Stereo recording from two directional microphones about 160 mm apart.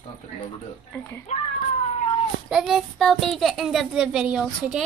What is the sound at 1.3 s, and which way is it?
Speech, 45° left (ahead or behind).